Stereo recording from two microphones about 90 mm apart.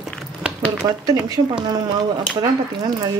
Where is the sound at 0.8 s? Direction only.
45° right (ahead or behind).